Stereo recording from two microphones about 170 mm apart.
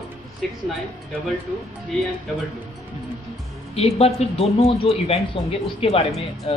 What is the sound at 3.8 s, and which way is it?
Speech, 35° left (ahead or behind).